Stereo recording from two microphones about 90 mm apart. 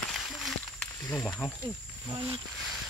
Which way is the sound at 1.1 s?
25° left (ahead or behind).